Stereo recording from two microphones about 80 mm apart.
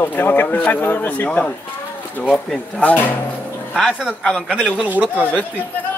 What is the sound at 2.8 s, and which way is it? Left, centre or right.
Speech, centre.